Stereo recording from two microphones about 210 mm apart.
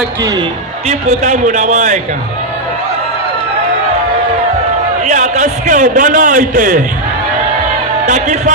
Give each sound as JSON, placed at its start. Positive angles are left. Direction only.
{"t": 0.8, "sound": "a man's voice", "side_deg": -35}
{"t": 5.0, "sound": "a man's voice", "side_deg": -35}